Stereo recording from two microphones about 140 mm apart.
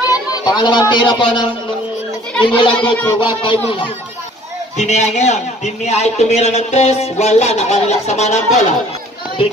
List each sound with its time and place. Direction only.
0.1 s a child's voice: 30° left (ahead or behind)
4.7 s speech: 55° left (ahead or behind)